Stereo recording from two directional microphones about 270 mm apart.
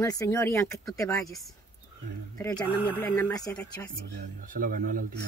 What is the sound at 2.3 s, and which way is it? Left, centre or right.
Speech, centre.